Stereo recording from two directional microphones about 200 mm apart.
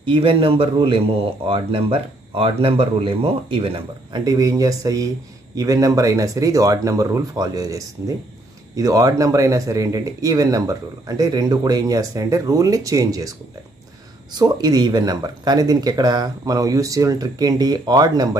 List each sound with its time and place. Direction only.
0.0 s speech: 25° right (ahead or behind)
14.3 s speech: 20° right (ahead or behind)